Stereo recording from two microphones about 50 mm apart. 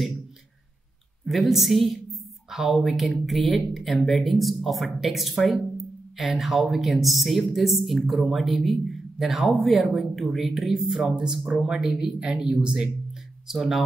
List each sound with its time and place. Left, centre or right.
1.2 s a man's voice: centre
13.5 s a man's voice: centre